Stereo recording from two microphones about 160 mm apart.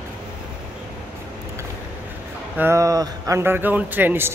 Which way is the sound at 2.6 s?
20° right (ahead or behind).